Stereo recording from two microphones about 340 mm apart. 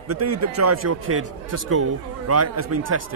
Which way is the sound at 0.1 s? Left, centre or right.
Right.